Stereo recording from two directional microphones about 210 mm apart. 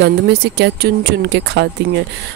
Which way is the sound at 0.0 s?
50° right (ahead or behind).